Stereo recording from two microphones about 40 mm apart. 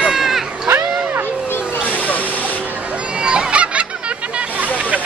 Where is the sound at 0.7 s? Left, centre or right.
Right.